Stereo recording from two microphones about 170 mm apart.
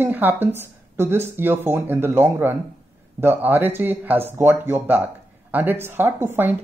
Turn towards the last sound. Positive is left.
turn(degrees=-10)  # may be behind; listen again after turning